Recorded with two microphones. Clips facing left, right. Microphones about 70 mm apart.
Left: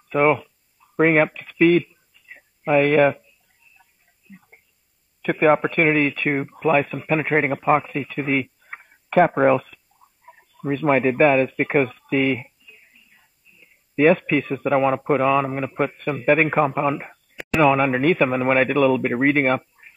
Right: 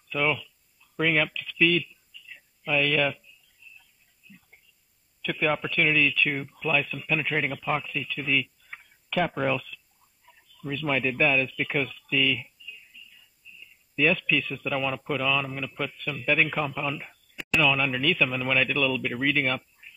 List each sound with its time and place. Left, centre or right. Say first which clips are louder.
0.1 s a sound: left 9 dB; left
4.2 s whispering: left 7 dB; left
5.2 s speech: left 10 dB; left